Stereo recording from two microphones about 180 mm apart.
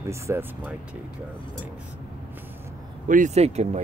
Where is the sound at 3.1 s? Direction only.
40° right (ahead or behind).